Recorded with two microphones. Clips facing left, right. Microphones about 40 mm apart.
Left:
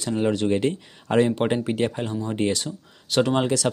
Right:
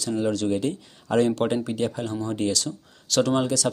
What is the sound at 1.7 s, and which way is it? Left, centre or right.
Speech, left.